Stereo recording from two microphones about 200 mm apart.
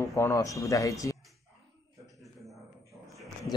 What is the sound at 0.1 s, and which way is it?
Speech, 15° left (ahead or behind).